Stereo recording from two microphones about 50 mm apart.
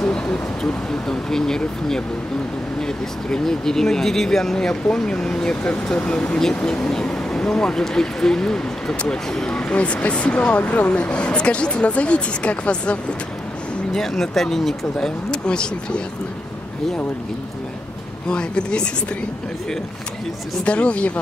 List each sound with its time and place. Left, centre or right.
0.0 s a sound: centre
1.0 s speech: centre
2.8 s speech: centre
5.9 s speech: left
13.9 s speech: centre
15.0 s speech: centre
18.3 s speech: centre
20.6 s speech: left